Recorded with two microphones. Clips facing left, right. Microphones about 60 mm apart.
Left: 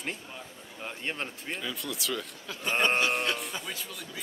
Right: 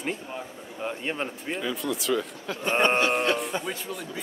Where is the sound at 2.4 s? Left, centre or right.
Right.